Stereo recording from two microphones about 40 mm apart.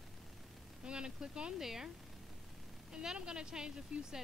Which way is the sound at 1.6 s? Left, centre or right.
Centre.